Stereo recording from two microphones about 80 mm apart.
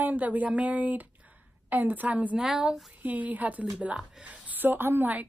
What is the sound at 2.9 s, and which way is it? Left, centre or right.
A woman's voice, centre.